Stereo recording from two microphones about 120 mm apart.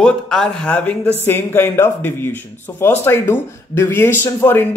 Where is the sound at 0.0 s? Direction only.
5° left (ahead or behind).